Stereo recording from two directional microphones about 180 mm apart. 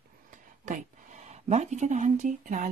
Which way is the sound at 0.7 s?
40° right (ahead or behind).